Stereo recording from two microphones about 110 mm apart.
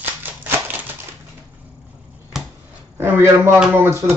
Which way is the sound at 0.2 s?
15° right (ahead or behind).